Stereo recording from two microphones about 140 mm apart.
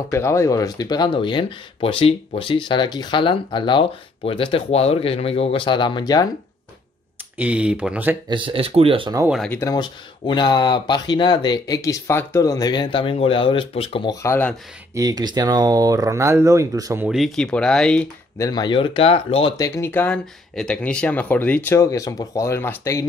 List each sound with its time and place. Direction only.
0.1 s speech: 20° left (ahead or behind)
7.3 s speech: 10° right (ahead or behind)
8.3 s speech: 40° right (ahead or behind)
9.5 s speech: 20° left (ahead or behind)
9.8 s speech: 35° left (ahead or behind)
14.0 s speech: 20° left (ahead or behind)
15.0 s speech: 25° right (ahead or behind)
17.0 s speech: centre (ahead or behind)
18.4 s speech: 30° left (ahead or behind)
19.5 s speech: 20° left (ahead or behind)